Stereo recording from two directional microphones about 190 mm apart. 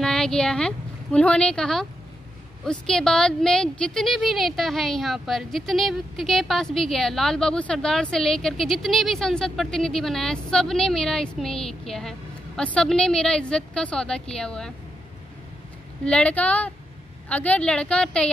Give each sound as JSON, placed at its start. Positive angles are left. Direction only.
{"t": 0.0, "sound": "a woman's voice", "side_deg": 5}
{"t": 16.1, "sound": "a woman's voice", "side_deg": 5}